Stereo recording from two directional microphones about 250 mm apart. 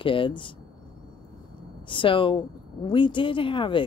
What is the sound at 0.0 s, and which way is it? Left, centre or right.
Speech, centre.